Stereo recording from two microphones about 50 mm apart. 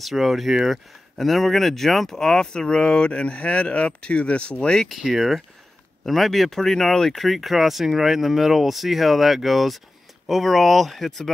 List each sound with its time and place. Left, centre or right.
0.0 s speech: centre
4.8 s speech: centre
7.2 s speech: centre